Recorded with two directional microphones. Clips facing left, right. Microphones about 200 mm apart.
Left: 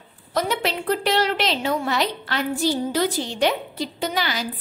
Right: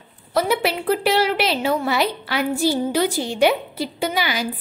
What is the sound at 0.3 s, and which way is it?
A woman's voice, 10° right (ahead or behind).